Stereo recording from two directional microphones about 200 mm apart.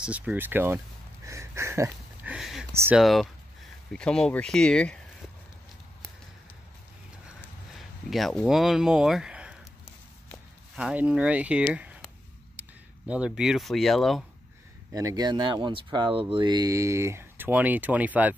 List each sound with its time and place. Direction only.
0.0 s speech: 5° right (ahead or behind)
1.2 s a sound: 15° right (ahead or behind)
2.7 s speech: 15° right (ahead or behind)
3.0 s speech: centre (ahead or behind)
7.7 s a sound: centre (ahead or behind)
10.8 s speech: 5° right (ahead or behind)
11.7 s a sound: 5° right (ahead or behind)
12.5 s speech: 5° right (ahead or behind)
14.9 s speech: 15° right (ahead or behind)